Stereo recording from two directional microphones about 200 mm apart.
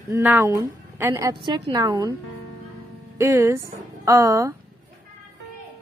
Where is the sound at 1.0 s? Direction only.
15° right (ahead or behind).